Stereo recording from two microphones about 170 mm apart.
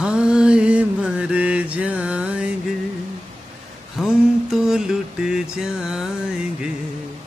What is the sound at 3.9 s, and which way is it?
Mantra, centre (ahead or behind).